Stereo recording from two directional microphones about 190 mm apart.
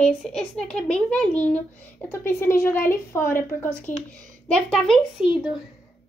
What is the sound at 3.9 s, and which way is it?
Speech, 45° left (ahead or behind).